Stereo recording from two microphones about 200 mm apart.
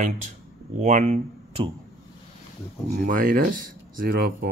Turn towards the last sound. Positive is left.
turn(degrees=-50)  # may be behind; listen again after turning